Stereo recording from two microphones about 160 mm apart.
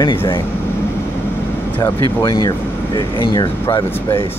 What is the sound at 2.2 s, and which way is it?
Speech, 25° left (ahead or behind).